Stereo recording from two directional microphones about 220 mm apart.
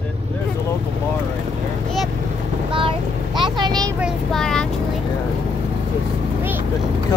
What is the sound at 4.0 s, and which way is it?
Speech, centre (ahead or behind).